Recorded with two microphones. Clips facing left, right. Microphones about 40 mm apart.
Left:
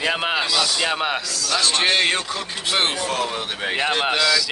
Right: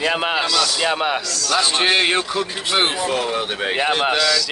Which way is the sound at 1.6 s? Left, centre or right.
Centre.